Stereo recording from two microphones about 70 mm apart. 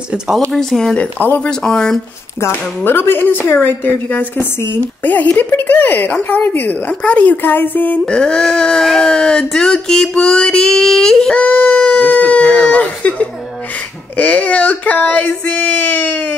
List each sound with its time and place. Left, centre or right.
0.5 s speech: centre
1.2 s speech: left
1.5 s speech: centre
2.4 s speech: left
8.0 s speech: centre
11.3 s speech: left